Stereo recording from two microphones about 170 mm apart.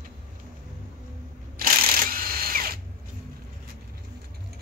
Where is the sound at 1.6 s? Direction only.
55° right (ahead or behind).